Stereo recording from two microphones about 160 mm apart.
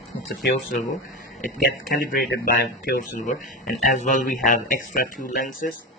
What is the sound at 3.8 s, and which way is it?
A man's voice, 50° left (ahead or behind).